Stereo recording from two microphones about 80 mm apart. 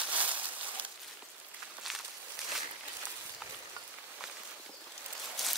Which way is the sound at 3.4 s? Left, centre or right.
Centre.